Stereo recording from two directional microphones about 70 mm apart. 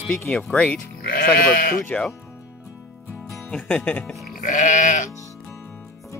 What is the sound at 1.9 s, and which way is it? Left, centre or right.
Speech, centre.